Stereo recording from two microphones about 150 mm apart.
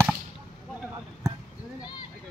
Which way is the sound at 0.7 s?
5° right (ahead or behind).